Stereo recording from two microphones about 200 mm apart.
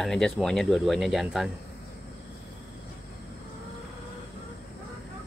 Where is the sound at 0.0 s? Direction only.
5° left (ahead or behind).